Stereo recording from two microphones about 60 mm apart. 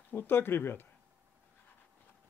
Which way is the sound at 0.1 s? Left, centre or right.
Left.